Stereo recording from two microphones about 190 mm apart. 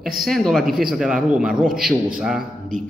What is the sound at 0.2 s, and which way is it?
A man's voice, centre (ahead or behind).